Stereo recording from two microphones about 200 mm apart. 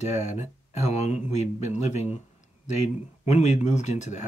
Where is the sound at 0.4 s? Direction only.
35° left (ahead or behind).